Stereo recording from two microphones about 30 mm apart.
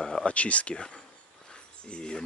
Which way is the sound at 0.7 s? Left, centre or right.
Left.